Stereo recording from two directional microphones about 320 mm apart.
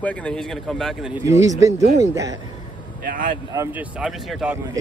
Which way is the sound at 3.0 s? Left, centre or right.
Right.